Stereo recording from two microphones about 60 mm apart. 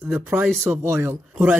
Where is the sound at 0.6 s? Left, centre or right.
Right.